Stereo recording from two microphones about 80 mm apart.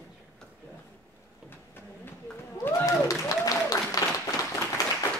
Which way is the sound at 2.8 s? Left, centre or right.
Left.